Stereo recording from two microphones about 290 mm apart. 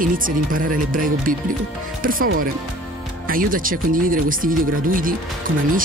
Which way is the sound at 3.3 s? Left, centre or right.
Right.